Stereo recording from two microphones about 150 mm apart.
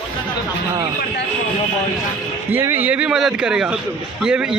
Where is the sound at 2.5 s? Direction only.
15° right (ahead or behind).